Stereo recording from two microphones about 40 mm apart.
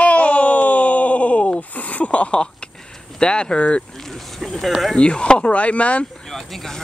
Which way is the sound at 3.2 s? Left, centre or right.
Left.